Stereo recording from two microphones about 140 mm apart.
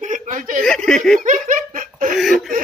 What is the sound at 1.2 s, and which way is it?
Laughter, 65° right (ahead or behind).